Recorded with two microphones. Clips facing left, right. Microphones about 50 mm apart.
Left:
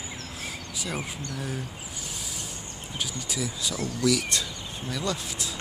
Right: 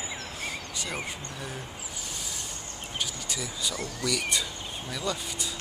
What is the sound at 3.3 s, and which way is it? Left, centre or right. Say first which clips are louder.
Speech: left 2 dB; centre.